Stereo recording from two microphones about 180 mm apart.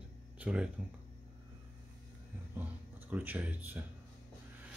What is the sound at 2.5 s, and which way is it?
Speech, 10° right (ahead or behind).